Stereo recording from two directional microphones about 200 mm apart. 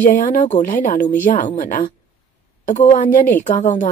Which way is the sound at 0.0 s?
40° left (ahead or behind).